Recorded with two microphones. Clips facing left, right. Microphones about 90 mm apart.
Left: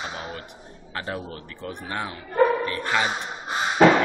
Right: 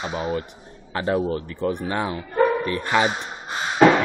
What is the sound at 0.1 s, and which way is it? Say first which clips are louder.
Speech: right 9 dB; 20° right (ahead or behind).